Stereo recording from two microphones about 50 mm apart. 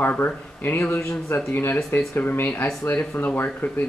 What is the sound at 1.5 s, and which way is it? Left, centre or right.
Speech, left.